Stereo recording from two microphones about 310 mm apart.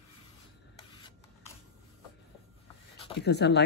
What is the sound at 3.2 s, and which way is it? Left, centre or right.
Speech, left.